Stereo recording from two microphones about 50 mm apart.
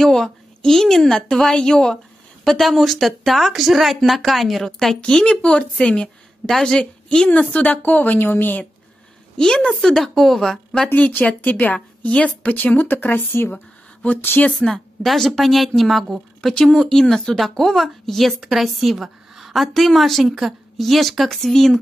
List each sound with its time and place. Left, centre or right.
0.0 s a woman's voice: centre
1.3 s a woman's voice: centre
5.2 s a woman's voice: centre
7.2 s a woman's voice: left
9.4 s a woman's voice: centre
11.0 s a woman's voice: left
12.4 s a woman's voice: left
14.6 s a woman's voice: centre
16.7 s a woman's voice: centre